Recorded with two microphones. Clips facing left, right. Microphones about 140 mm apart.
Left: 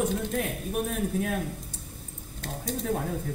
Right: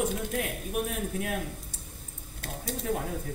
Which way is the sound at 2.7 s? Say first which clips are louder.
Left 2 dB; 40° left (ahead or behind).